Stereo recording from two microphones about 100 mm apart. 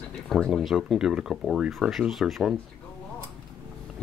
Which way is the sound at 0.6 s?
Centre (ahead or behind).